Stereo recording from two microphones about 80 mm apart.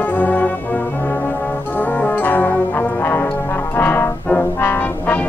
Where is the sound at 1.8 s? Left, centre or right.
Left.